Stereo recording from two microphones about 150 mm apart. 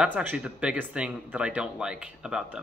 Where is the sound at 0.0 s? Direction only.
10° right (ahead or behind).